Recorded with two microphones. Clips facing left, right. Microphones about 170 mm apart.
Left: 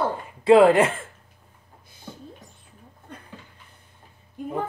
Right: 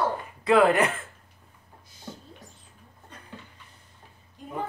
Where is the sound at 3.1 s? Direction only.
55° left (ahead or behind).